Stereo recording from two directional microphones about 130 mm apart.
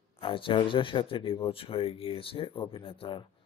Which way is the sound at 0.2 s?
40° left (ahead or behind).